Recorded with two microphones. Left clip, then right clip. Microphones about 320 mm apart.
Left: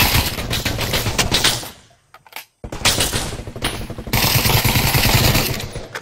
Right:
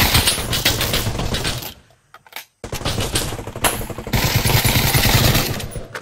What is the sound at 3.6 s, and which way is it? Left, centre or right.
Vehicle, centre.